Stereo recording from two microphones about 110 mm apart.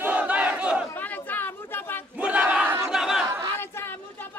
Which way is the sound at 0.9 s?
15° left (ahead or behind).